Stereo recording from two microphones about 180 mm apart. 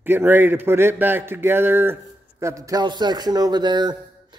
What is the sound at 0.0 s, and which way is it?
A man's voice, 10° right (ahead or behind).